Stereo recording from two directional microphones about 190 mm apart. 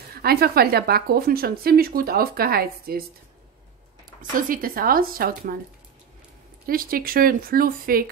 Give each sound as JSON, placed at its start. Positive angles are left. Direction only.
{"t": 0.1, "sound": "speech", "side_deg": -55}
{"t": 4.2, "sound": "speech", "side_deg": -45}
{"t": 6.6, "sound": "speech", "side_deg": -50}